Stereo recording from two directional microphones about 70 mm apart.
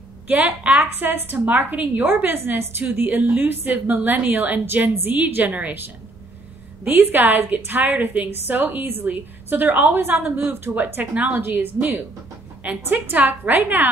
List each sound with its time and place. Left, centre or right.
0.3 s a woman's voice: right
6.8 s a woman's voice: right